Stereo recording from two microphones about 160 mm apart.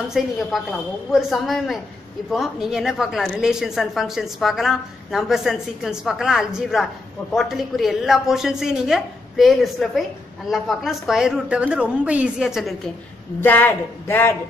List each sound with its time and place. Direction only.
0.1 s speech: centre (ahead or behind)
13.4 s speech: 10° left (ahead or behind)